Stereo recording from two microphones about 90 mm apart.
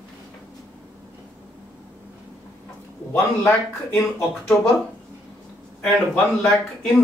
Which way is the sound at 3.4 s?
30° left (ahead or behind).